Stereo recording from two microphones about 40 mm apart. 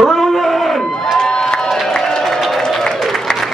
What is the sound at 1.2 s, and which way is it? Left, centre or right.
Crowd, centre.